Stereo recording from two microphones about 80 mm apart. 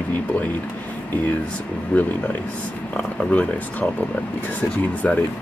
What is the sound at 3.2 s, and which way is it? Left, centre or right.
Speech, centre.